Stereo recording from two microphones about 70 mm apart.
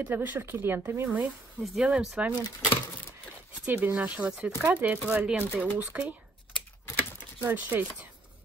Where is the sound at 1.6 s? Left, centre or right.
Centre.